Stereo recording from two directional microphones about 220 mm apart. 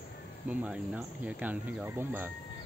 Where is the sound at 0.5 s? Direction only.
5° right (ahead or behind).